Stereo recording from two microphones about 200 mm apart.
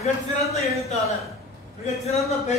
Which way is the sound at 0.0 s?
30° left (ahead or behind).